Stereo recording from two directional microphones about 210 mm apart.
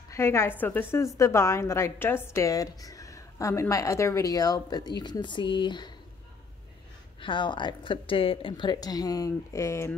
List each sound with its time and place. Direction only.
0.1 s a woman's voice: 10° left (ahead or behind)
7.2 s a woman's voice: 25° left (ahead or behind)